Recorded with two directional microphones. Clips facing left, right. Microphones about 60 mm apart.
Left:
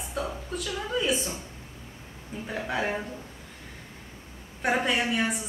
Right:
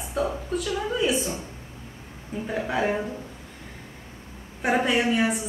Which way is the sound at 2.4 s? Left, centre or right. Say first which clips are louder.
Right 4 dB; centre.